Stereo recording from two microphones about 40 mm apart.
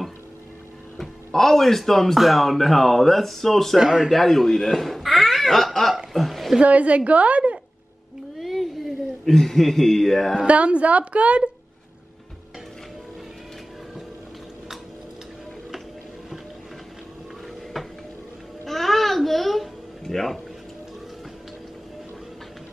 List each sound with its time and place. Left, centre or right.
1.0 s speech: centre
3.7 s a man's voice: centre
4.1 s speech: centre
6.1 s a sound: centre
6.6 s a woman's voice: right
8.4 s a sound: centre
10.4 s a woman's voice: right
17.8 s a sound: centre
18.7 s music: centre